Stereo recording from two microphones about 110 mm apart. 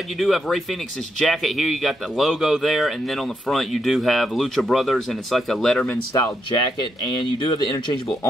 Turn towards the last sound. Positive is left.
turn(degrees=45)  # may be behind; listen again after turning